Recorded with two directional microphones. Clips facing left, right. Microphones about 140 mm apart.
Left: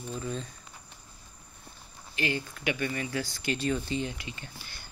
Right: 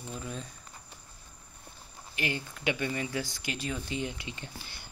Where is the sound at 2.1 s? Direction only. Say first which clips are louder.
Left 3 dB; 15° right (ahead or behind).